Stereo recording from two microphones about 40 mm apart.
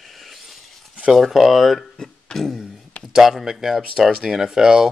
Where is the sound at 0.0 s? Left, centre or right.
Centre.